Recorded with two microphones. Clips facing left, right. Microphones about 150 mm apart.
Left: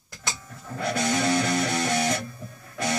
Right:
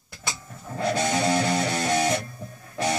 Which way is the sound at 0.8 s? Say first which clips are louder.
Right 1 dB; 30° right (ahead or behind).